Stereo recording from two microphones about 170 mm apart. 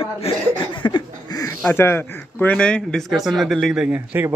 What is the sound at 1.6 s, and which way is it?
Speech, 10° left (ahead or behind).